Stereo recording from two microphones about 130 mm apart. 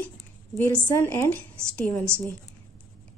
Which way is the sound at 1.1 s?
15° left (ahead or behind).